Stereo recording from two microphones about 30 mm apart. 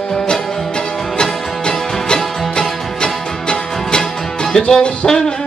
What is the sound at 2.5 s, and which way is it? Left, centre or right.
Music, left.